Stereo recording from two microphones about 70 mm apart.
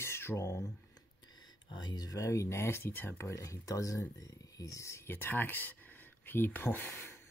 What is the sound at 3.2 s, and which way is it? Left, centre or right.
Speech, left.